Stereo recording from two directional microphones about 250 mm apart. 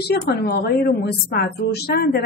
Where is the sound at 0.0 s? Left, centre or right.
Left.